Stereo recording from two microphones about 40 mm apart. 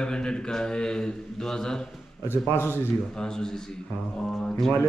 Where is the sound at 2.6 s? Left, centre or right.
Left.